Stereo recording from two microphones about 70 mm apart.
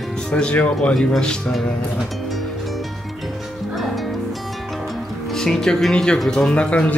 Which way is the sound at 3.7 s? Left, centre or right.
Centre.